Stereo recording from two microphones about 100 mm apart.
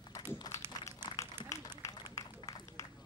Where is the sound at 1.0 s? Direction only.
35° left (ahead or behind).